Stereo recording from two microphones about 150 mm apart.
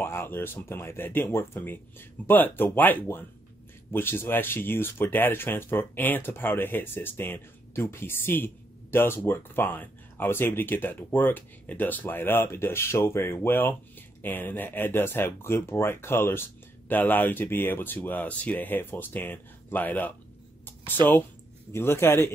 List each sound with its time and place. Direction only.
0.0 s speech: 15° left (ahead or behind)
20.6 s a sound: 15° left (ahead or behind)
21.7 s speech: 15° left (ahead or behind)